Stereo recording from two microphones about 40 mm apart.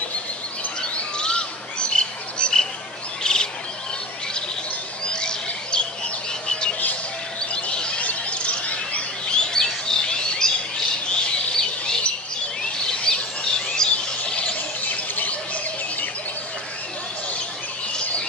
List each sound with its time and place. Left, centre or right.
0.9 s bird: left
5.1 s bird: left
7.7 s a sound: left
8.0 s bird: left
9.3 s bird: centre
11.1 s squawk: centre
13.0 s bird vocalization: left
14.8 s a sound: left